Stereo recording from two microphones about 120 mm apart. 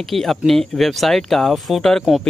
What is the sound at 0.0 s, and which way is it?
Speech, centre (ahead or behind).